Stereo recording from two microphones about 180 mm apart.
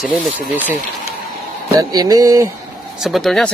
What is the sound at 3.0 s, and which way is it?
Speech, centre (ahead or behind).